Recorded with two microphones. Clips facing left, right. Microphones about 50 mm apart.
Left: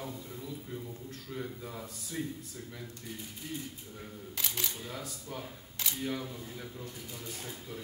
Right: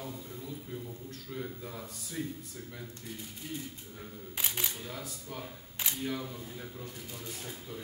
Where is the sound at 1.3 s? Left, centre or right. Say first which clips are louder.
Even; centre.